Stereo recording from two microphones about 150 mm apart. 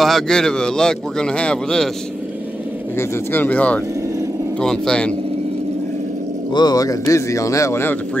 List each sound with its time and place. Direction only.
0.0 s speech: 5° left (ahead or behind)
3.0 s speech: 15° left (ahead or behind)
6.5 s speech: 25° left (ahead or behind)